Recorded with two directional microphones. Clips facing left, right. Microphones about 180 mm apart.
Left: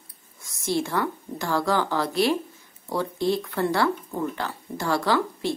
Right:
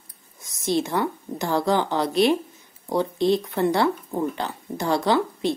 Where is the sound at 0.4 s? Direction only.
20° right (ahead or behind).